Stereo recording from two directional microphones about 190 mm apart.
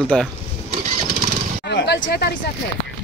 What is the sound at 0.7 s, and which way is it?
Engine starting, 40° right (ahead or behind).